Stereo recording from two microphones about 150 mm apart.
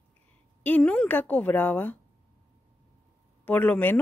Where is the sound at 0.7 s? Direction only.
10° left (ahead or behind).